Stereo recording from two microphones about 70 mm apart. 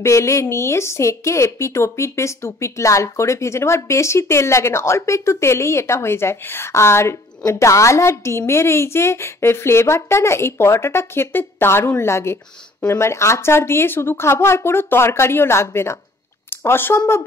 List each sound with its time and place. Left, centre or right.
0.0 s a woman's voice: left